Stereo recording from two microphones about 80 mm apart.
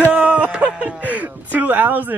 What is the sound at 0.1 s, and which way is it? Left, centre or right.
A man's voice, centre.